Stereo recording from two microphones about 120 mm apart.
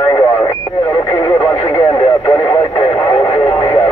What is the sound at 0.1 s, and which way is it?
Radio, 35° left (ahead or behind).